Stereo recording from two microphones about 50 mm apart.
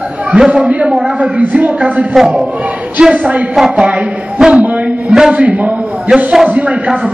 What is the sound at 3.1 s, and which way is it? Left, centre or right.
Speech, right.